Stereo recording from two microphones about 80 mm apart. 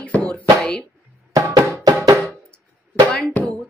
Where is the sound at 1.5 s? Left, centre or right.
Right.